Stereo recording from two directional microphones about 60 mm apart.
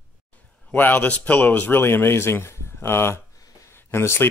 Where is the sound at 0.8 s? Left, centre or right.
Left.